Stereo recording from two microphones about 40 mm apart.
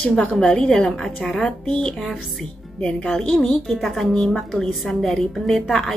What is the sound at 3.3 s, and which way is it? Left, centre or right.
A woman's voice, centre.